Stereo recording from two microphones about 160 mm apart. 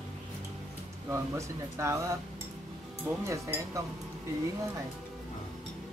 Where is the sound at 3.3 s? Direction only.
20° right (ahead or behind).